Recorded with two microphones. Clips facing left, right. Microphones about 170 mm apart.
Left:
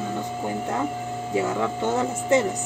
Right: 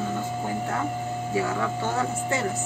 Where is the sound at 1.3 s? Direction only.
20° left (ahead or behind).